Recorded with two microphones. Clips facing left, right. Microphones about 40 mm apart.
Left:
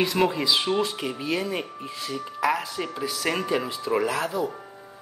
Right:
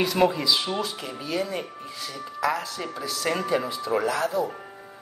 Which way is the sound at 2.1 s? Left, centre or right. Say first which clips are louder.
Left 1 dB; left.